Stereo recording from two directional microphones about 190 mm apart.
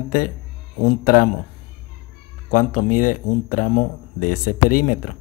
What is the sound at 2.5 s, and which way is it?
Speech, 40° left (ahead or behind).